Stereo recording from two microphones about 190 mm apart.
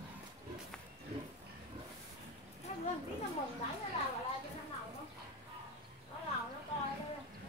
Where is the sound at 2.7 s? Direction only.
40° left (ahead or behind).